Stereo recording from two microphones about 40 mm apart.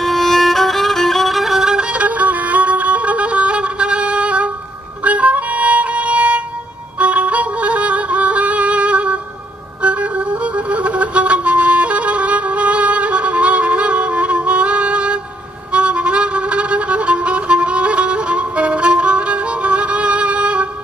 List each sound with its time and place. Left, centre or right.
0.0 s violin: centre
1.9 s music: right